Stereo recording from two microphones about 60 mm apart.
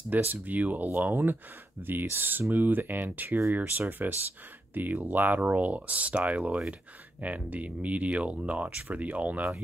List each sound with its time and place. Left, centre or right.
0.1 s speech: right